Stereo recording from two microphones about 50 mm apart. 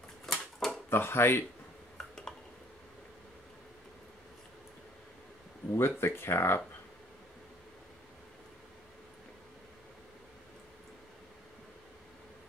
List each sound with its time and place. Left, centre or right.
0.3 s typewriter: centre
0.8 s speech: left
2.0 s a sound: centre
5.7 s speech: left